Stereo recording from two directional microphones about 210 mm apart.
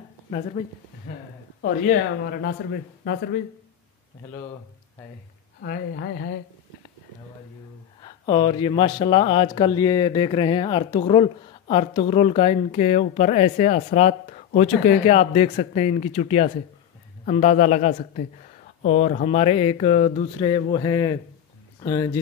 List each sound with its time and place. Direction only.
1.6 s speech: 45° left (ahead or behind)
5.6 s speech: 50° left (ahead or behind)
8.0 s a man's voice: 20° left (ahead or behind)